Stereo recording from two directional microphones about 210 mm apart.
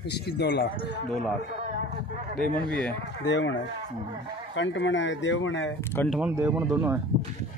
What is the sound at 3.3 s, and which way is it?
Speech, 60° left (ahead or behind).